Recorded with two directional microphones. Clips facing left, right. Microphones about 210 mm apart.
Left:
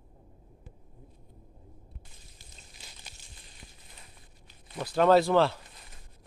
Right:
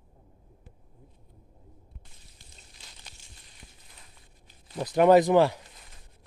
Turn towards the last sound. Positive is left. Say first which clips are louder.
# right 3 dB
turn(degrees=-15)  # may be behind; listen again after turning